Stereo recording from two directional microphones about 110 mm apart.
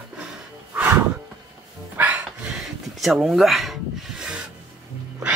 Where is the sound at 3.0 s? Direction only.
5° right (ahead or behind).